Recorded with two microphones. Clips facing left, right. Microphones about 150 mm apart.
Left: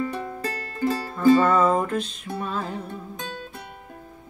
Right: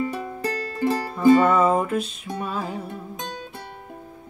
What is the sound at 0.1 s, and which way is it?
Music, 15° right (ahead or behind).